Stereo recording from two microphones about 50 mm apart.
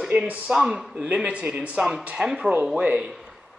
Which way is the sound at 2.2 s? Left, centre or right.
Centre.